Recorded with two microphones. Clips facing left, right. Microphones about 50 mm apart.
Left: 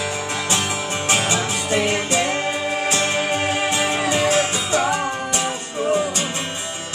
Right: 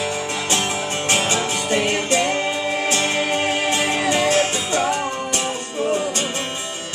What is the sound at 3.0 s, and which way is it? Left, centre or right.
Music, centre.